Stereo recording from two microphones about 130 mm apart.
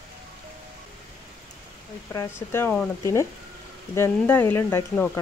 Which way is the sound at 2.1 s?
20° left (ahead or behind).